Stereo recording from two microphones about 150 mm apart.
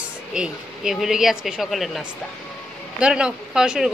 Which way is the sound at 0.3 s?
5° right (ahead or behind).